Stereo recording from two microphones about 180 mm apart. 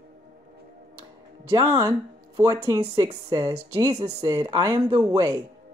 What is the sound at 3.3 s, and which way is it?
Speech, 20° right (ahead or behind).